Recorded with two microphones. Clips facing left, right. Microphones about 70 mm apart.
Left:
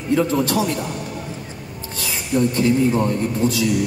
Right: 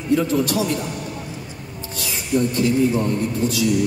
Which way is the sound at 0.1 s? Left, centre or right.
Left.